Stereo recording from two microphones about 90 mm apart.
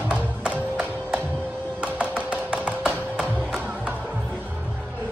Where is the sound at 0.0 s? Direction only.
15° right (ahead or behind).